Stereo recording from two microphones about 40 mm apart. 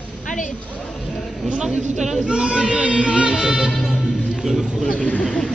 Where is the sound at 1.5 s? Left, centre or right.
Right.